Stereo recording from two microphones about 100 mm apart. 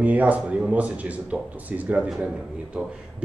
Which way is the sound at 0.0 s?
15° right (ahead or behind).